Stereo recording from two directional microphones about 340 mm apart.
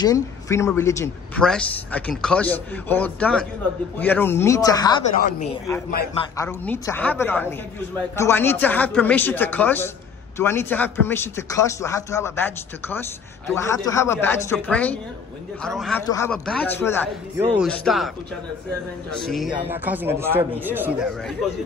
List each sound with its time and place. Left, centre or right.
0.0 s a man's voice: centre
5.1 s speech: left
6.3 s a man's voice: centre
19.1 s speech: centre